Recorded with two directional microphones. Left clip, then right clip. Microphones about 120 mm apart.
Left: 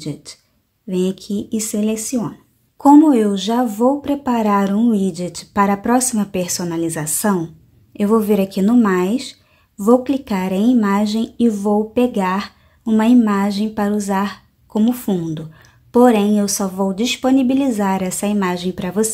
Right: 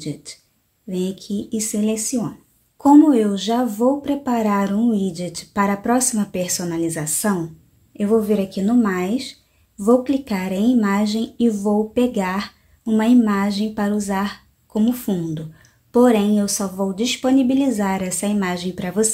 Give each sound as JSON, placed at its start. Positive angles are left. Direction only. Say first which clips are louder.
{"t": 0.0, "sound": "a woman's voice", "louder": "left 1 dB", "side_deg": 25}
{"t": 8.0, "sound": "a woman's voice", "louder": "left 3 dB", "side_deg": 35}